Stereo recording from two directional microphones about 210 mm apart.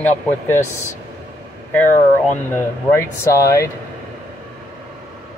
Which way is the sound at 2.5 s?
10° left (ahead or behind).